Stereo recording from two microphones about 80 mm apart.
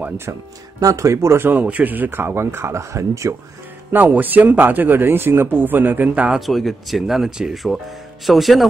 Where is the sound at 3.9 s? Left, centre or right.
Right.